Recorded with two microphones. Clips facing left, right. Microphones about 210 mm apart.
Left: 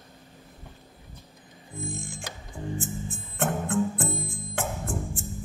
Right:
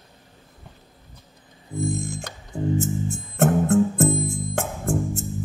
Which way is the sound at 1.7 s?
40° right (ahead or behind).